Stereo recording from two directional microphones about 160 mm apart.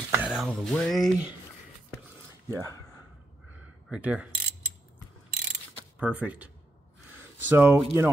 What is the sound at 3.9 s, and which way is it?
Speech, 5° right (ahead or behind).